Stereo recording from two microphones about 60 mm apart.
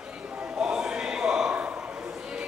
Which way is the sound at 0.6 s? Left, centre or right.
Centre.